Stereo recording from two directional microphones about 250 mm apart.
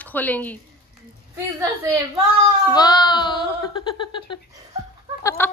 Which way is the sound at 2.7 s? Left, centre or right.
Centre.